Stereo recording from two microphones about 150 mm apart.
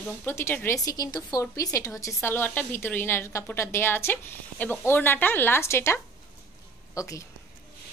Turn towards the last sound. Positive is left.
turn(degrees=20)  # may be behind; listen again after turning